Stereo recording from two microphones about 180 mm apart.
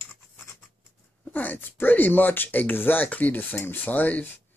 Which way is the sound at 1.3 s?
10° left (ahead or behind).